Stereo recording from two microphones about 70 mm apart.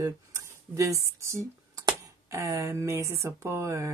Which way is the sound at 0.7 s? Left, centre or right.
Right.